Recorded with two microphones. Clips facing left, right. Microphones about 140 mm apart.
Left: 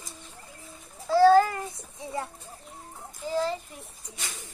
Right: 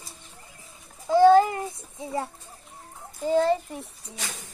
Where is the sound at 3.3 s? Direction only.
60° right (ahead or behind).